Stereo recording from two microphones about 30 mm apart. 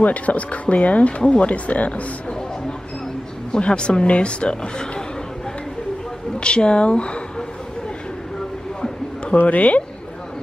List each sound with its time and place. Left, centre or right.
0.0 s speech: left
3.5 s speech: left
6.4 s speech: left
9.4 s speech: left